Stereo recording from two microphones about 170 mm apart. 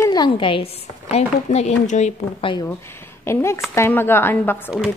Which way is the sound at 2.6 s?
15° left (ahead or behind).